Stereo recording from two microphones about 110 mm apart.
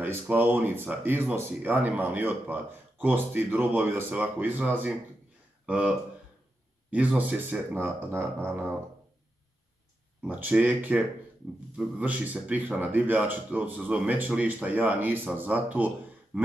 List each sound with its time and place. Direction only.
0.0 s speech: 20° right (ahead or behind)
10.2 s speech: 15° right (ahead or behind)